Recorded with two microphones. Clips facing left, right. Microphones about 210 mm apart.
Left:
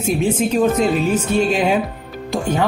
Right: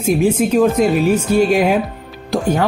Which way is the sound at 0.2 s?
Centre (ahead or behind).